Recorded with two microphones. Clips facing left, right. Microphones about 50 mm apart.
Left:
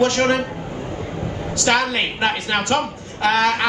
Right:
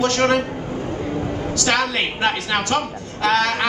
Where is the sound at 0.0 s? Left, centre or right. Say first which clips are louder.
Even; centre.